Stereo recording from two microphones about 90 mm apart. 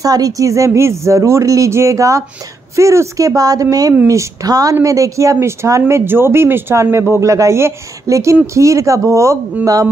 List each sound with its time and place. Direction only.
0.0 s speech: 40° right (ahead or behind)